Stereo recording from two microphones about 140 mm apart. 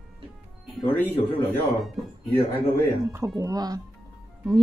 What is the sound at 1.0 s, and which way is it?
Speech, 15° left (ahead or behind).